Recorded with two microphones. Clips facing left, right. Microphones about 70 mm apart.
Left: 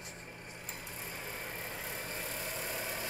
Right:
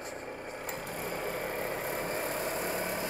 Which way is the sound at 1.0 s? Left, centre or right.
Right.